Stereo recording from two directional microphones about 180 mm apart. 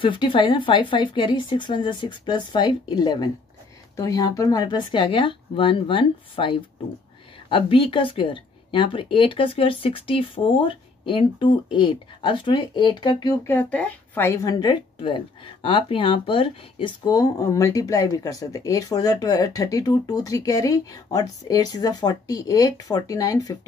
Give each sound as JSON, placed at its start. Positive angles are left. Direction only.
{"t": 0.0, "sound": "speech", "side_deg": 30}